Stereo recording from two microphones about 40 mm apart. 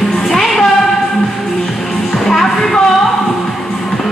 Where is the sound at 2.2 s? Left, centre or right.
Centre.